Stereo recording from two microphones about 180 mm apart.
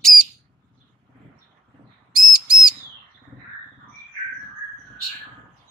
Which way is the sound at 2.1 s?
5° right (ahead or behind).